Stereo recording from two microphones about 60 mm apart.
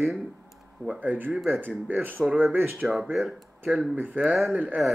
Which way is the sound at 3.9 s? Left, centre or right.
Right.